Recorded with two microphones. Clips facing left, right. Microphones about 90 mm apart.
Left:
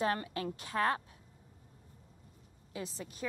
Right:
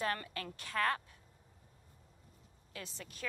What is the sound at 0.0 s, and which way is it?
A woman's voice, 25° left (ahead or behind).